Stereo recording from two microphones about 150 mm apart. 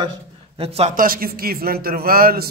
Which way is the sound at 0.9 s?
70° right (ahead or behind).